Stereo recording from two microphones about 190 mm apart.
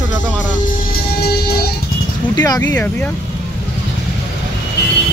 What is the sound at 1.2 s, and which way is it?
Music, 55° left (ahead or behind).